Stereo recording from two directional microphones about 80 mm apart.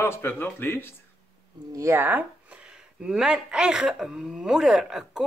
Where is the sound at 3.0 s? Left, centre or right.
Centre.